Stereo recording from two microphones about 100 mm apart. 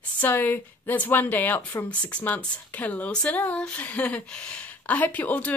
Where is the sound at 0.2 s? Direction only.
20° left (ahead or behind).